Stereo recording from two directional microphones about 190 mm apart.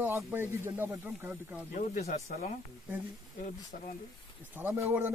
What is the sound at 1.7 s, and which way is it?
Speech, 40° left (ahead or behind).